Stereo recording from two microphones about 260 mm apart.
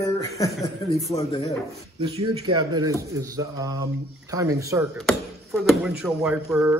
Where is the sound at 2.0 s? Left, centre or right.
Centre.